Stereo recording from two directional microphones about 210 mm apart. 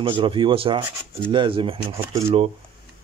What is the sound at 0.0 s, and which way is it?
Speech, 25° right (ahead or behind).